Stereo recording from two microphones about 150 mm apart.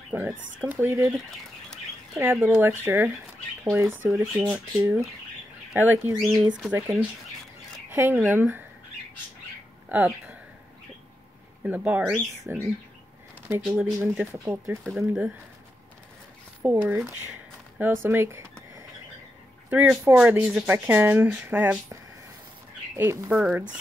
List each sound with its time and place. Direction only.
0.1 s speech: 10° right (ahead or behind)
2.1 s speech: 15° right (ahead or behind)
6.1 s speech: centre (ahead or behind)
7.9 s speech: 15° right (ahead or behind)
9.8 s speech: 10° right (ahead or behind)
11.6 s speech: 10° right (ahead or behind)
13.7 s speech: 5° right (ahead or behind)
14.3 s speech: 20° right (ahead or behind)
14.8 s speech: centre (ahead or behind)
16.6 s speech: 15° right (ahead or behind)
19.7 s speech: 10° right (ahead or behind)
22.9 s speech: 15° right (ahead or behind)